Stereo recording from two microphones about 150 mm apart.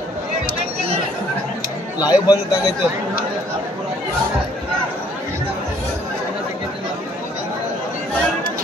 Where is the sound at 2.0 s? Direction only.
25° left (ahead or behind).